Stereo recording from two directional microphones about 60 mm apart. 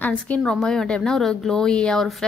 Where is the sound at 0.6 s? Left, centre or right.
Centre.